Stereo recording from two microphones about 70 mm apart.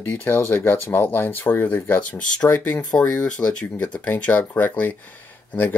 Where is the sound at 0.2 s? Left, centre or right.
Left.